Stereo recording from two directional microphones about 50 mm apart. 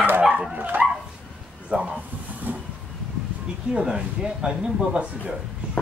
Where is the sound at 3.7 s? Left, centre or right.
Centre.